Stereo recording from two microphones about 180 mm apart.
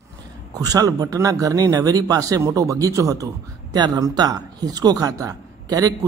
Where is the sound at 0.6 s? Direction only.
20° right (ahead or behind).